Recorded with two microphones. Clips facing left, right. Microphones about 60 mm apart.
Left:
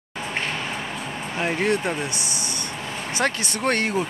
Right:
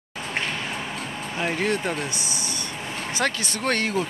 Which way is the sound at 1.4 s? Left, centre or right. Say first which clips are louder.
Left 2 dB; centre.